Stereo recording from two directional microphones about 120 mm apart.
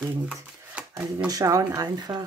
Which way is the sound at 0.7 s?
10° right (ahead or behind).